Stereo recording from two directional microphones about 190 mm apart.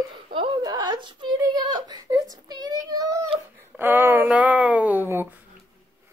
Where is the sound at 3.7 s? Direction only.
10° right (ahead or behind).